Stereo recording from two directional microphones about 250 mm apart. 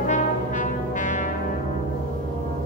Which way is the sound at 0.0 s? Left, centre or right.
Left.